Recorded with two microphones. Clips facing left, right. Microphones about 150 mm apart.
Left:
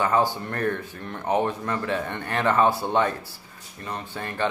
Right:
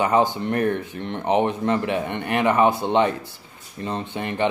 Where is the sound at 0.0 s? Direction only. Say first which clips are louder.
Right 3 dB; 20° right (ahead or behind).